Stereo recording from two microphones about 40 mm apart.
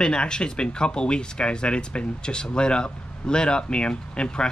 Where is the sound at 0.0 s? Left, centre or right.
Left.